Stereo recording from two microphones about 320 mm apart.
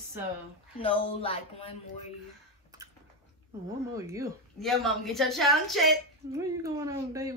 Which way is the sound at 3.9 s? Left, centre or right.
Centre.